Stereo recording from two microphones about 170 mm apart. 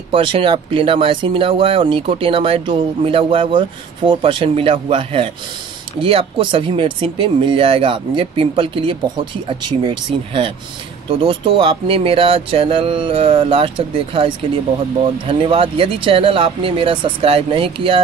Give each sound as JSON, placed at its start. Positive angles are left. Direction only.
{"t": 0.1, "sound": "speech", "side_deg": -30}